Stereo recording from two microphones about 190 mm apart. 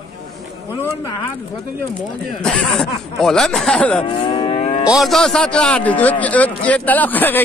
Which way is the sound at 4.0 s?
25° left (ahead or behind).